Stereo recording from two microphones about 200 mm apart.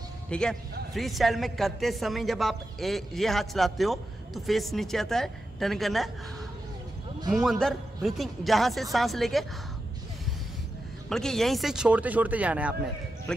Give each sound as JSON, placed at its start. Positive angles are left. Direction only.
{"t": 0.3, "sound": "speech", "side_deg": 5}
{"t": 7.3, "sound": "speech", "side_deg": 0}
{"t": 11.1, "sound": "speech", "side_deg": 0}